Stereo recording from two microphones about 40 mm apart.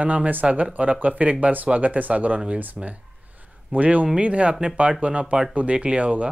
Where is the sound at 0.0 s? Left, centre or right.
Right.